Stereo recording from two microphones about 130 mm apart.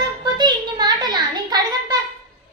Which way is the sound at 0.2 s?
35° right (ahead or behind).